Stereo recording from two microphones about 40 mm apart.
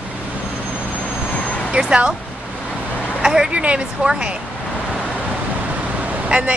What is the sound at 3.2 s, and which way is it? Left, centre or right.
Speech, centre.